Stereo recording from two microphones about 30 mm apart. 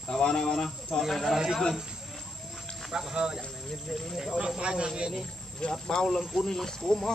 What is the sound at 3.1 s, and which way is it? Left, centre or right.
Speech, right.